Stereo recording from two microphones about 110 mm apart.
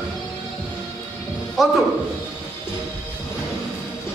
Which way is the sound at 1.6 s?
Centre (ahead or behind).